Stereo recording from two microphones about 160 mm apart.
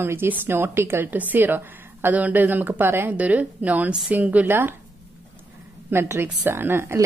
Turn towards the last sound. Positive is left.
turn(degrees=-15)  # may be behind; listen again after turning